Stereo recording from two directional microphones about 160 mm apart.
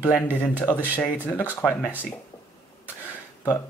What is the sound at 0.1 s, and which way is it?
Speech, 10° left (ahead or behind).